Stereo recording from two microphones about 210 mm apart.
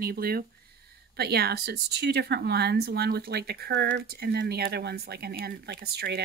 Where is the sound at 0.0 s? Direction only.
45° right (ahead or behind).